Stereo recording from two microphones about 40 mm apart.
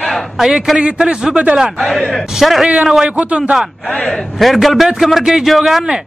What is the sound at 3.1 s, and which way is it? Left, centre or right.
Speech, right.